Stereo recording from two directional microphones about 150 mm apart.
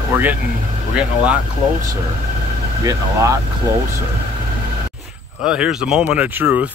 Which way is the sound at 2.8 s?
20° right (ahead or behind).